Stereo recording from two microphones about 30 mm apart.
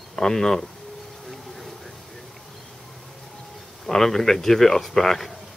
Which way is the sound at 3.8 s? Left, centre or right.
Centre.